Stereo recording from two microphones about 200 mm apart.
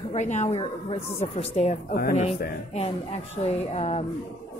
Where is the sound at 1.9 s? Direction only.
50° left (ahead or behind).